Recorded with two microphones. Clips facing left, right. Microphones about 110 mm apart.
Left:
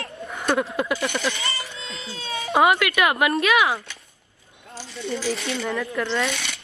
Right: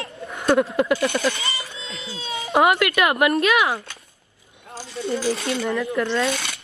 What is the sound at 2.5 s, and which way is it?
Speech, 20° left (ahead or behind).